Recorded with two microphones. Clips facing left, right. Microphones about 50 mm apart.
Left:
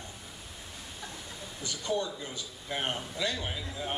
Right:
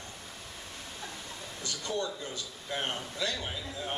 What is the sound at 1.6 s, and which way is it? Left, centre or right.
A man's voice, left.